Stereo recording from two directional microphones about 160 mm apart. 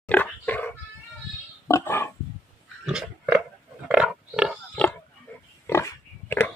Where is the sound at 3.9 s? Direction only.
5° right (ahead or behind).